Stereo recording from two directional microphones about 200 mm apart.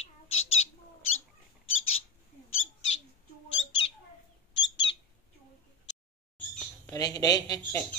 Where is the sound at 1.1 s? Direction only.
90° left.